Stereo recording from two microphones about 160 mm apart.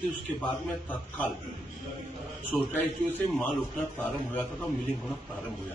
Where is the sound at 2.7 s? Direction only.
10° left (ahead or behind).